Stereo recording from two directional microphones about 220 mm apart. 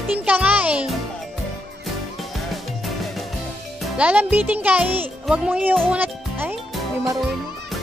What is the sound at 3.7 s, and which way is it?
A child's voice, 5° right (ahead or behind).